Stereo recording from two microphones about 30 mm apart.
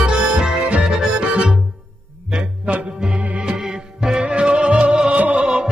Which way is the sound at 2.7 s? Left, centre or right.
Right.